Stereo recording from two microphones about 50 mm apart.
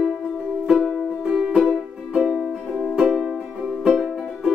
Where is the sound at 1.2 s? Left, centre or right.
Centre.